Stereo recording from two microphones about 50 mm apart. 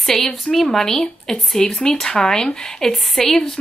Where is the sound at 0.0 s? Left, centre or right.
Centre.